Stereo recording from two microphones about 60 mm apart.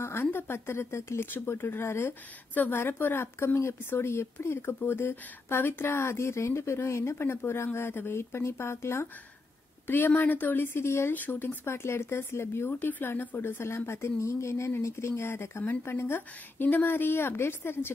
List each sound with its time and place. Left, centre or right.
0.0 s a woman's voice: left
9.8 s a woman's voice: left
11.1 s speech: left
15.6 s a woman's voice: left